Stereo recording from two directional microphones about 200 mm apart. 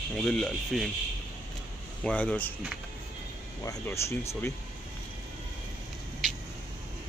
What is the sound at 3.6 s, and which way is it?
Speech, 15° left (ahead or behind).